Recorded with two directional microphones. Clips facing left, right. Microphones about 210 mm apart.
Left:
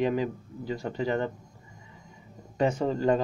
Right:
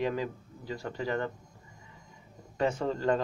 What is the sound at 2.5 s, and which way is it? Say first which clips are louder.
Speech: left 4 dB; 20° left (ahead or behind).